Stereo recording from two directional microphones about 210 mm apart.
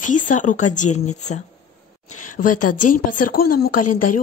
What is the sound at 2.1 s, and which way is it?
Speech, 90° left.